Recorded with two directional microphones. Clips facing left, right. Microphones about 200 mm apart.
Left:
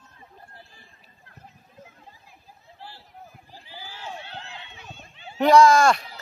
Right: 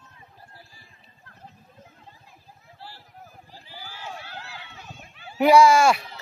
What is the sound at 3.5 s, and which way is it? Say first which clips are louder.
Run: left 1 dB; 15° left (ahead or behind).